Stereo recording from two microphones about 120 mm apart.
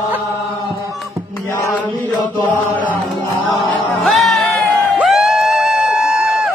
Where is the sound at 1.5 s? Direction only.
25° left (ahead or behind).